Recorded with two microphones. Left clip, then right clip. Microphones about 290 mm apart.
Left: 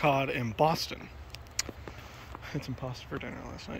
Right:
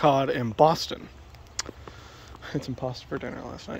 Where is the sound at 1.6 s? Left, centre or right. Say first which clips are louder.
Right 1 dB; centre.